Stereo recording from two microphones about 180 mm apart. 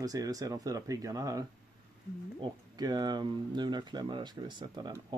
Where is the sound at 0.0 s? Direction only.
20° right (ahead or behind).